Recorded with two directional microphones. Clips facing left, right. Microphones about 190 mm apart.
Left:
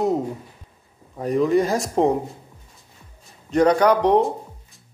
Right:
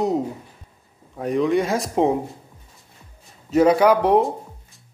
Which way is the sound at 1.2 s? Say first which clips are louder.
Left 1 dB; centre (ahead or behind).